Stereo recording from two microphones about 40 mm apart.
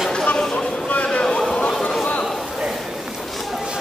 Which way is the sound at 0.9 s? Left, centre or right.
Left.